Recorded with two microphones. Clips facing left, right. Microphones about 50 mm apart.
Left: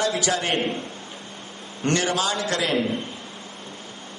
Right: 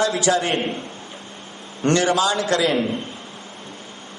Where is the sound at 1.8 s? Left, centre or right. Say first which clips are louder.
Right 5 dB; right.